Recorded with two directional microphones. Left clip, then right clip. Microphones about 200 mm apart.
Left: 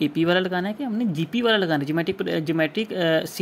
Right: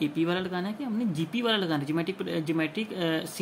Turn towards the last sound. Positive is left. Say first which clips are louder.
# left 8 dB
turn(degrees=35)  # may be behind; listen again after turning